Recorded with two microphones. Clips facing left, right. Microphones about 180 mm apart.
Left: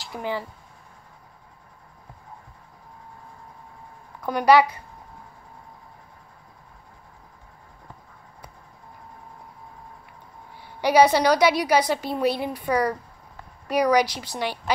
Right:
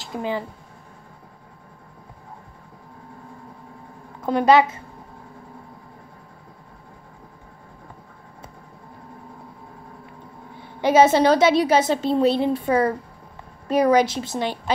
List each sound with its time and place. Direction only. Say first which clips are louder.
0.0 s speech: right 3 dB; 20° right (ahead or behind)
4.2 s a woman's voice: right 1 dB; 25° right (ahead or behind)
10.5 s a woman's voice: right 2 dB; 20° right (ahead or behind)